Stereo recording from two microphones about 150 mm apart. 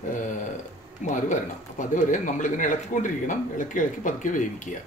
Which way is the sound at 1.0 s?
55° left (ahead or behind).